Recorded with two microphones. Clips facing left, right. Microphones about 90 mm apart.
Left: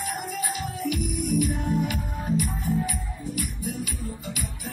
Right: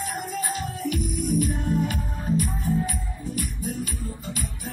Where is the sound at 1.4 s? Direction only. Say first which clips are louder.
Even; 40° right (ahead or behind).